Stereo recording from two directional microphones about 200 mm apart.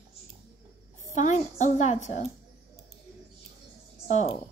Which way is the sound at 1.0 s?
35° left (ahead or behind).